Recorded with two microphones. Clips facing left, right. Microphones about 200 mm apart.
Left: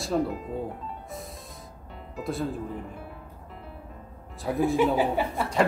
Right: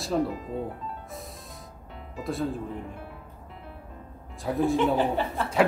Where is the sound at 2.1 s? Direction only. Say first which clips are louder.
Right 1 dB; centre (ahead or behind).